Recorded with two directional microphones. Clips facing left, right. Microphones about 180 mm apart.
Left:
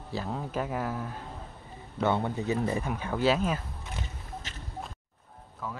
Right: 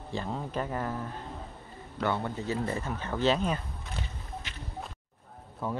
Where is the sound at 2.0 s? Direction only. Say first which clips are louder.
Left 3 dB; 20° left (ahead or behind).